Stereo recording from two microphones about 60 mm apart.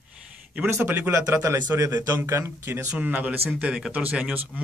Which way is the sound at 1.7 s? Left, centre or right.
Right.